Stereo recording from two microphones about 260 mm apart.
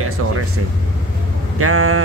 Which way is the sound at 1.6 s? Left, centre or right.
Right.